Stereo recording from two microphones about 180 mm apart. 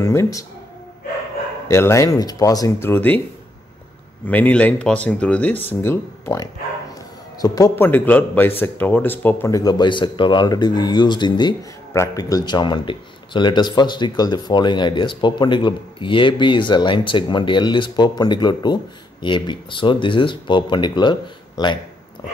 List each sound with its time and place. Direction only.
0.0 s speech: 15° left (ahead or behind)
1.7 s speech: 15° left (ahead or behind)
4.3 s speech: 10° left (ahead or behind); by 21.7 s 25° left (ahead or behind)